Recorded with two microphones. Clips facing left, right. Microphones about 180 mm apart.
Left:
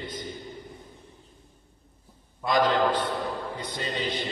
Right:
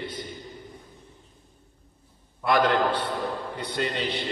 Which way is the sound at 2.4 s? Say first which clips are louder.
Right 1 dB; 65° right (ahead or behind).